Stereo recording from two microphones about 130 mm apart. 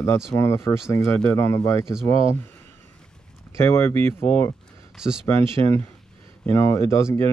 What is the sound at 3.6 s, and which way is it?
Speech, 20° left (ahead or behind).